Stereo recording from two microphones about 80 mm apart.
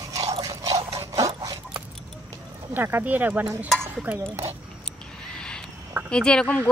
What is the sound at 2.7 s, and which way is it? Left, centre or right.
Speech, right.